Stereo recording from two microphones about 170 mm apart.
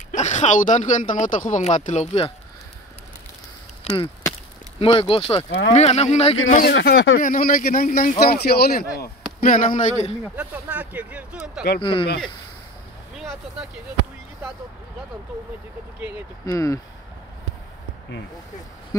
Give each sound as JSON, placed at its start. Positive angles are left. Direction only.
{"t": 0.1, "sound": "speech", "side_deg": 45}
{"t": 3.8, "sound": "speech", "side_deg": 30}
{"t": 6.6, "sound": "speech", "side_deg": 80}
{"t": 7.2, "sound": "speech", "side_deg": 50}
{"t": 9.4, "sound": "speech", "side_deg": 50}
{"t": 10.2, "sound": "speech", "side_deg": -10}
{"t": 11.8, "sound": "speech", "side_deg": 30}
{"t": 13.1, "sound": "vehicle", "side_deg": -5}
{"t": 16.4, "sound": "speech", "side_deg": 20}